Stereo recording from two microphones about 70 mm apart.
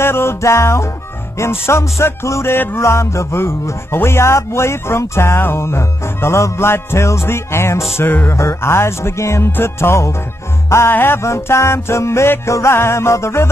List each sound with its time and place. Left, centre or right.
0.0 s music: left
1.4 s speech: left
2.8 s speech: left